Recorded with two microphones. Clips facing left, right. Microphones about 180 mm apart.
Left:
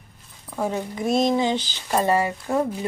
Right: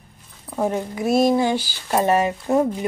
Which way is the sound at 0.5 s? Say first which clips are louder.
Right 3 dB; 15° right (ahead or behind).